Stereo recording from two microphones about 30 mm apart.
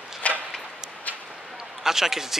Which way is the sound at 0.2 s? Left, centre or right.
Left.